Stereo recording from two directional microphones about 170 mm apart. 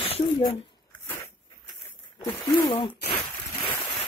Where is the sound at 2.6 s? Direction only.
30° left (ahead or behind).